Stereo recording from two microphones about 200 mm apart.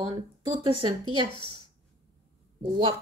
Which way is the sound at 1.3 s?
25° left (ahead or behind).